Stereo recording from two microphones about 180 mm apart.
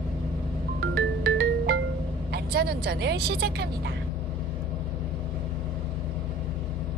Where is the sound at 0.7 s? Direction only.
65° right (ahead or behind).